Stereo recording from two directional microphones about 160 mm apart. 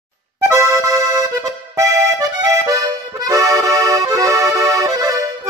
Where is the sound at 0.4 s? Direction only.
15° right (ahead or behind).